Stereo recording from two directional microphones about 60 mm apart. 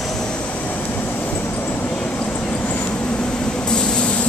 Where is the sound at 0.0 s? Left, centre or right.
Centre; by 1.9 s left.